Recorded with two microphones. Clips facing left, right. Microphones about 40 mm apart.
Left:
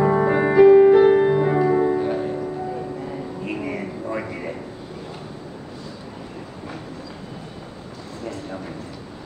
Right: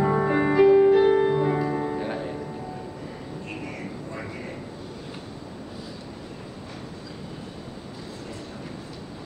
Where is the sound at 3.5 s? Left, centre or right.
Left.